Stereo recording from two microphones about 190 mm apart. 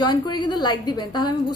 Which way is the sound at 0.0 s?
20° left (ahead or behind).